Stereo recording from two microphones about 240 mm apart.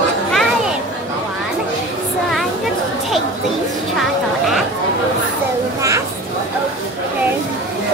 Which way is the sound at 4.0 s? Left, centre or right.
Centre.